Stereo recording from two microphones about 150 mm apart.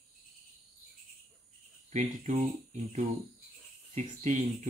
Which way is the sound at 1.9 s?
50° right (ahead or behind).